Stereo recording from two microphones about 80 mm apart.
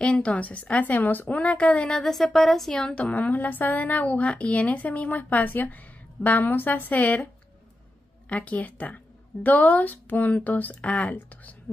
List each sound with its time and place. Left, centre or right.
0.0 s a woman's voice: centre
8.3 s a woman's voice: centre